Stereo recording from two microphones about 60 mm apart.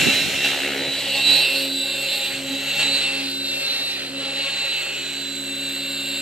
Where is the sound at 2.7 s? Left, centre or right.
Centre.